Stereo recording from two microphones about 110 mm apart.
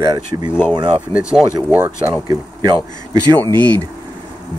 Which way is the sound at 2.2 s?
40° right (ahead or behind).